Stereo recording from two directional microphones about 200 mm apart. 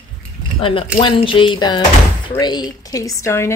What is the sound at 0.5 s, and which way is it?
A woman's voice, 25° left (ahead or behind).